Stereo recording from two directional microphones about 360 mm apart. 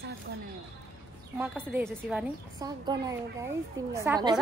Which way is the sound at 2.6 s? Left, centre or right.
Centre.